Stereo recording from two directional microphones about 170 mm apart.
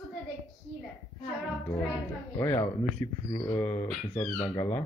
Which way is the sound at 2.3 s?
15° left (ahead or behind).